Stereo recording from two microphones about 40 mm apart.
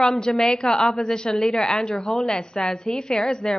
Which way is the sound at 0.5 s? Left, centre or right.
Centre.